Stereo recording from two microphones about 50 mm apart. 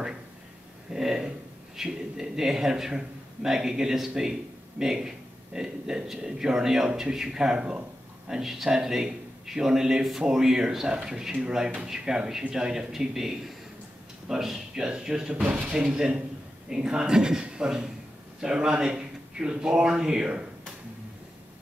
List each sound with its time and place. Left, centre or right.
0.9 s a sound: centre
1.8 s a man's voice: centre
8.3 s speech: centre